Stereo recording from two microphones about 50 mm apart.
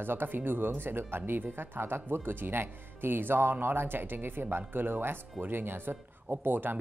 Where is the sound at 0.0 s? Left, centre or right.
Right.